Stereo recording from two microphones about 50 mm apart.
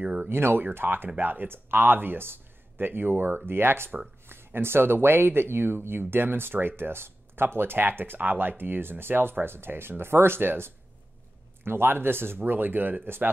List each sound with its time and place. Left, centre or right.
0.3 s speech: right